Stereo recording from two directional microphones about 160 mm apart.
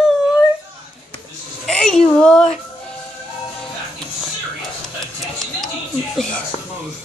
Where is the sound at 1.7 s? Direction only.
5° left (ahead or behind).